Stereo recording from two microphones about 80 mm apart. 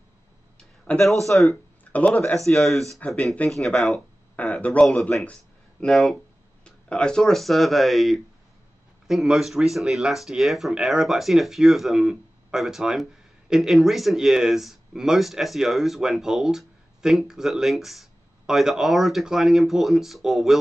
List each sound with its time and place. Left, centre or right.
0.9 s speech: centre
1.9 s speech: centre
2.3 s speech: centre
4.4 s speech: centre
5.2 s a sound: centre
5.9 s speech: centre
6.6 s speech: centre